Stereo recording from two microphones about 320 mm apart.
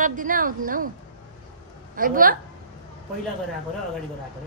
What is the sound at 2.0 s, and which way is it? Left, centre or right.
Speech, right.